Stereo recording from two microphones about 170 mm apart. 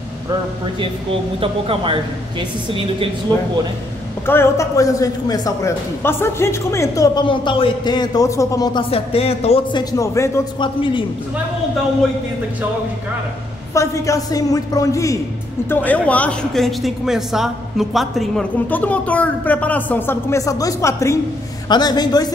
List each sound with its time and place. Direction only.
1.4 s speech: 30° right (ahead or behind)
4.3 s a man's voice: 15° left (ahead or behind)
10.6 s a man's voice: 30° left (ahead or behind)
13.7 s a man's voice: 20° left (ahead or behind)